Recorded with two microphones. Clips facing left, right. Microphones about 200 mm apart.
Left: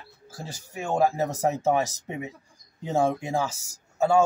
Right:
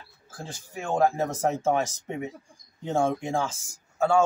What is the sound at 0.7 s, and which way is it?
A man's voice, 10° left (ahead or behind).